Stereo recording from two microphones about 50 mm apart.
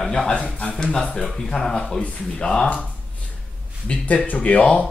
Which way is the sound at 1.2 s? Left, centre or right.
Centre.